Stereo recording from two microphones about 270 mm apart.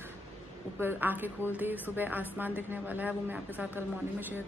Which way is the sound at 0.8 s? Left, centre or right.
Centre.